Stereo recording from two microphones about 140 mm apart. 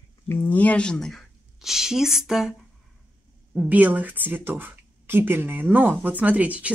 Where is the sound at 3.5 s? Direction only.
10° right (ahead or behind).